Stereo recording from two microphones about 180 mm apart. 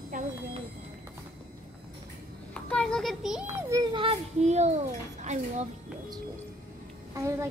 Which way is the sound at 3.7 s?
30° right (ahead or behind).